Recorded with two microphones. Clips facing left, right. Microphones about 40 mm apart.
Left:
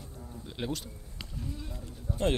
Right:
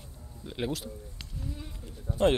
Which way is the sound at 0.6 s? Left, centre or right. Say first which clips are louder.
Right 3 dB; centre.